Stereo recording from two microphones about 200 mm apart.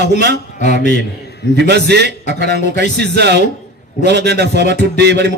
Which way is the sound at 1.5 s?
55° right (ahead or behind).